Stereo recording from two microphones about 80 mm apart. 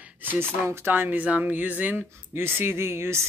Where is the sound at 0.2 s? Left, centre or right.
Right.